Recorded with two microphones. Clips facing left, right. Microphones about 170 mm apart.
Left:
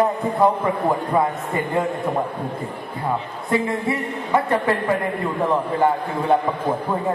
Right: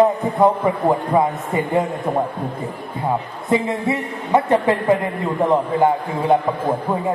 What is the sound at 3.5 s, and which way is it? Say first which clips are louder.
A man's voice: right 2 dB; 20° right (ahead or behind).